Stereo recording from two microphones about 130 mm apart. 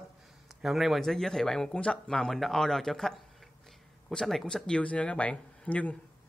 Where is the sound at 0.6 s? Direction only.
Centre (ahead or behind).